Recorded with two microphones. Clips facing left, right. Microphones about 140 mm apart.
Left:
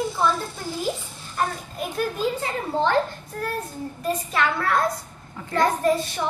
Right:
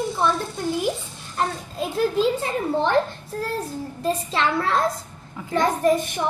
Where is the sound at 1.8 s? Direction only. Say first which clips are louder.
Right 5 dB; 25° right (ahead or behind).